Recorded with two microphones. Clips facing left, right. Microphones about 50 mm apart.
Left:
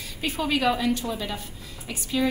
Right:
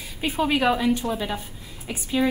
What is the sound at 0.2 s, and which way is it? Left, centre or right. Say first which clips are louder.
A woman's voice: right 3 dB; centre.